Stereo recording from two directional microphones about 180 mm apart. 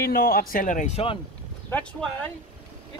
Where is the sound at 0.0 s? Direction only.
55° left (ahead or behind); by 1.1 s 35° left (ahead or behind).